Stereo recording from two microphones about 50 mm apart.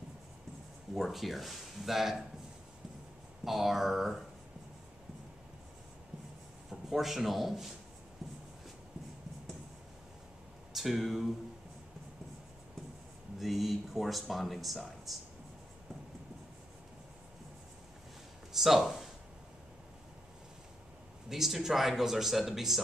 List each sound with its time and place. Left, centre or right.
0.9 s speech: centre
3.4 s speech: centre
6.7 s a man's voice: centre
10.7 s speech: centre
13.4 s speech: centre
18.5 s speech: centre
21.3 s speech: centre